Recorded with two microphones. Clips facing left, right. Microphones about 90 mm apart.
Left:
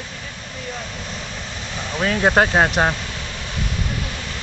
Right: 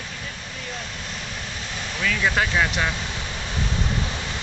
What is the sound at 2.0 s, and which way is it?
Speech, 45° left (ahead or behind).